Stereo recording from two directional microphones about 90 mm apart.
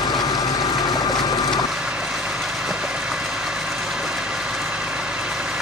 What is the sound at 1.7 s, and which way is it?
Vehicle, 10° right (ahead or behind).